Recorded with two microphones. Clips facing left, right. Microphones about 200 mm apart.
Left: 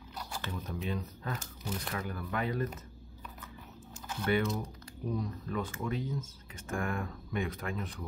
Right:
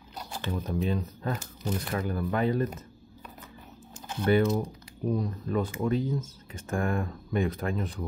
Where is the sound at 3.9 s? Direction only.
20° right (ahead or behind).